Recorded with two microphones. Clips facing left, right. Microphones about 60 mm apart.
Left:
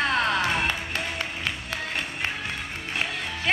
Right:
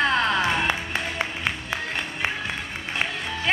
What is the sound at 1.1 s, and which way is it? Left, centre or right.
Music, centre.